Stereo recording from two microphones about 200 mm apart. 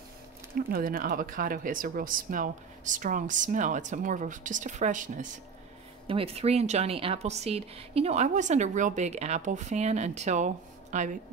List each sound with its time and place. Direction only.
0.6 s a woman's voice: 45° right (ahead or behind)
6.0 s a woman's voice: 30° right (ahead or behind)